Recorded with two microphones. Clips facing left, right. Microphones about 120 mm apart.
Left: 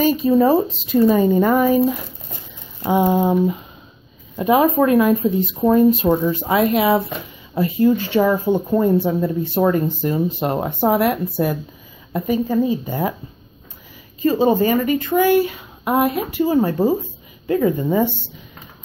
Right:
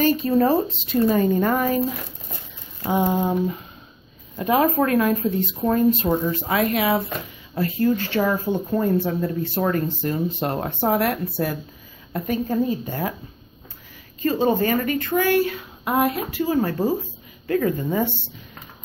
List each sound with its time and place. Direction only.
0.0 s speech: 10° left (ahead or behind)
4.4 s speech: 15° left (ahead or behind)
6.0 s speech: 25° left (ahead or behind); by 13.0 s 5° left (ahead or behind)
14.4 s speech: 10° left (ahead or behind)